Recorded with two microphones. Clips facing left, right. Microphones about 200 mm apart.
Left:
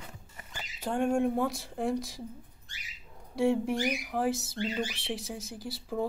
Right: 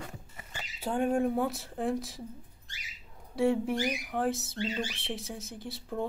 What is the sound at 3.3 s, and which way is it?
Speech, centre (ahead or behind).